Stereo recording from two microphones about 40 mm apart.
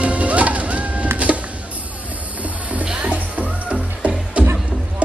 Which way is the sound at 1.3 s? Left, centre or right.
Right.